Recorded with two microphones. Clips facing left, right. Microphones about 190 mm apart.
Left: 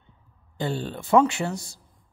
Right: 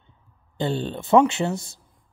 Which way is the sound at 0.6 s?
25° right (ahead or behind).